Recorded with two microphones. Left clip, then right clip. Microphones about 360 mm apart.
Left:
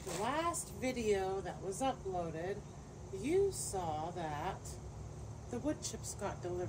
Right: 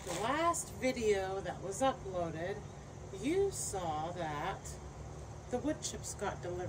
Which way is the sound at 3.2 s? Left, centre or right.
Centre.